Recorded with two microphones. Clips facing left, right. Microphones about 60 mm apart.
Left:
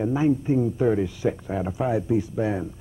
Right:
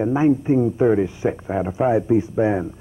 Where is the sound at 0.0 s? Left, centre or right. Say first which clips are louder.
Right 4 dB; right.